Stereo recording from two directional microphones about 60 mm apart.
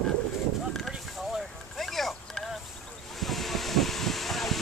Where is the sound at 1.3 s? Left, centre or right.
Centre.